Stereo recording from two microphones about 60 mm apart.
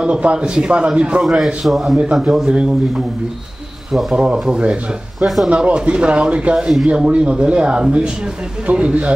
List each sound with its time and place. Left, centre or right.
0.0 s a man's voice: centre
1.2 s a man's voice: centre
3.9 s a man's voice: centre
5.2 s a man's voice: centre
5.8 s a man's voice: centre